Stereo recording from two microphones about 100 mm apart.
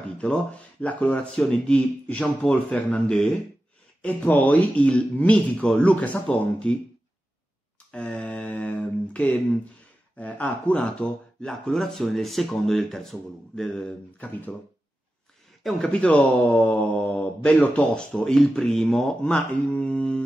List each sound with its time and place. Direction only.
0.2 s speech: 10° left (ahead or behind)
7.9 s mantra: 15° left (ahead or behind)
10.1 s speech: 15° left (ahead or behind)
15.6 s speech: 10° left (ahead or behind)